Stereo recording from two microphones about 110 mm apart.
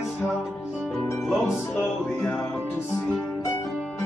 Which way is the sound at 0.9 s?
5° left (ahead or behind).